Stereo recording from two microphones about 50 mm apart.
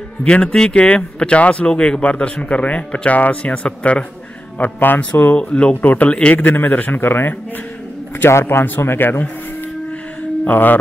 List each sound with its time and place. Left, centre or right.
0.2 s speech: left
4.7 s speech: left
5.3 s speech: left
5.8 s a man's voice: left
7.0 s speech: left
8.3 s a man's voice: left
8.6 s speech: left
10.4 s a man's voice: left